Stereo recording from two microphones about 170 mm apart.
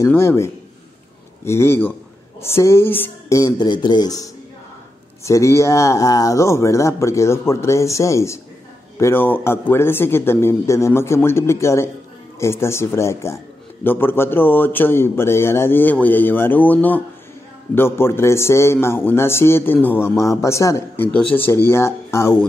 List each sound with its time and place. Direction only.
0.0 s a man's voice: 15° left (ahead or behind)